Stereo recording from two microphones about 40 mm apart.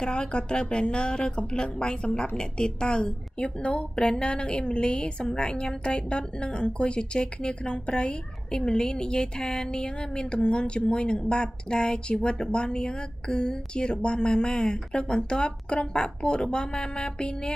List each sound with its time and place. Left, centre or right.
0.0 s a woman's voice: left